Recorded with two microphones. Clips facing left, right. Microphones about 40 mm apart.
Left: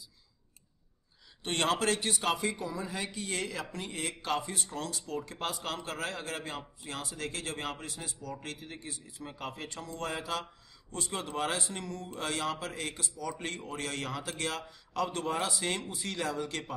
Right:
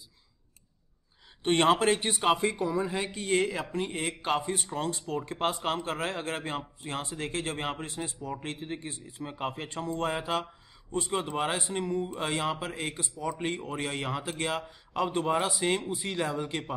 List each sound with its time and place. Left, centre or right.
1.4 s speech: right